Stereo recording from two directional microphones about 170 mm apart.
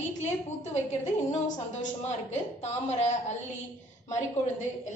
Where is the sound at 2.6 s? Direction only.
40° left (ahead or behind).